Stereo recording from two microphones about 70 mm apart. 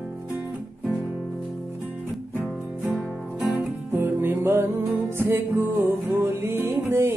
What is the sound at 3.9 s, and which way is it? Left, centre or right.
Music, right.